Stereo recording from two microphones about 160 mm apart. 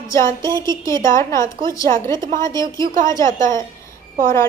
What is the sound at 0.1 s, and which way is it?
A woman's voice, 20° left (ahead or behind).